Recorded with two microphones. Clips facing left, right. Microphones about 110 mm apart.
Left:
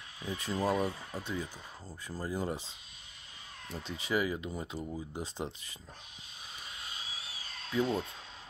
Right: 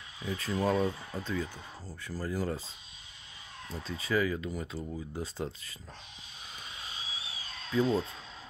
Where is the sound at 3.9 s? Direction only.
20° left (ahead or behind).